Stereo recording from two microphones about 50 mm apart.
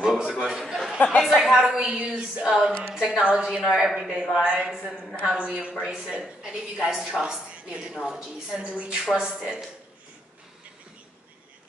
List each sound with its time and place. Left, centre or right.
0.0 s a sound: centre
0.9 s a woman's voice: left
1.3 s a woman's voice: centre
3.7 s a woman's voice: centre
5.9 s a woman's voice: centre
7.5 s a woman's voice: right